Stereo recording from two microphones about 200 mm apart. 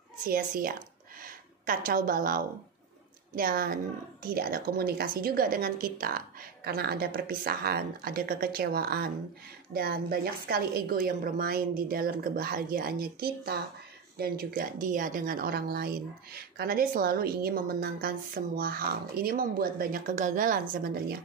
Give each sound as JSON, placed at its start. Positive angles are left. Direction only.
{"t": 0.3, "sound": "speech", "side_deg": -45}